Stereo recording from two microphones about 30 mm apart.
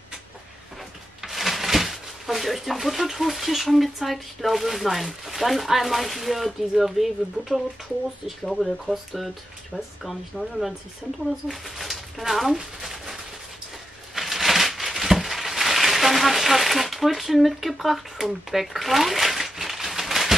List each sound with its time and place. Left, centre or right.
1.2 s speech: centre
11.8 s a sound: centre
14.1 s crushing: centre